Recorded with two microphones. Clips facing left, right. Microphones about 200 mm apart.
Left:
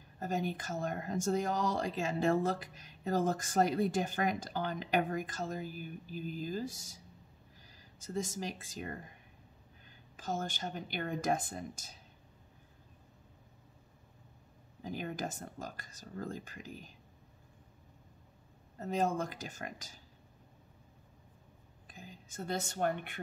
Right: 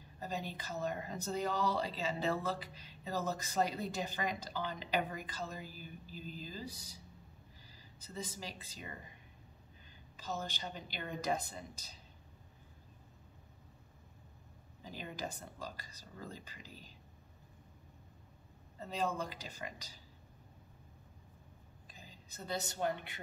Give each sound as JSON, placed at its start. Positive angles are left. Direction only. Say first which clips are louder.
{"t": 0.2, "sound": "speech", "louder": "left 6 dB", "side_deg": 50}
{"t": 10.1, "sound": "speech", "louder": "left 4 dB", "side_deg": 50}
{"t": 14.8, "sound": "speech", "louder": "left 5 dB", "side_deg": 55}
{"t": 18.8, "sound": "speech", "louder": "left 5 dB", "side_deg": 50}
{"t": 21.8, "sound": "speech", "louder": "left 7 dB", "side_deg": 50}